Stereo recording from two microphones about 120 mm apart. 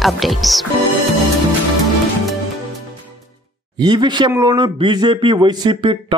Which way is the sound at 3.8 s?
35° right (ahead or behind).